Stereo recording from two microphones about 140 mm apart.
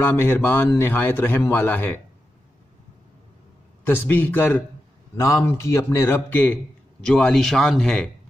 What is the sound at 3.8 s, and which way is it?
A man's voice, 15° left (ahead or behind).